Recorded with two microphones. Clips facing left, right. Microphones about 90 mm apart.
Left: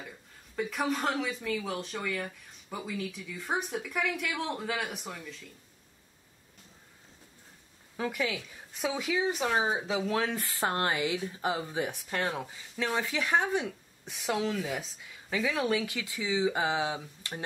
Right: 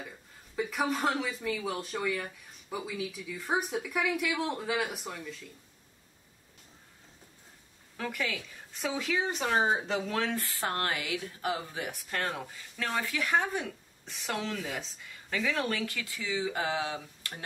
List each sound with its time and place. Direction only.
0.6 s speech: centre (ahead or behind)
8.0 s speech: 10° left (ahead or behind)
10.3 s speech: 20° left (ahead or behind)